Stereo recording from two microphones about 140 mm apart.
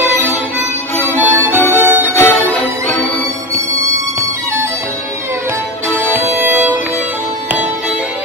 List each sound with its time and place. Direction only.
0.0 s music: 15° right (ahead or behind)
2.1 s music: 15° left (ahead or behind)
5.9 s music: 15° right (ahead or behind)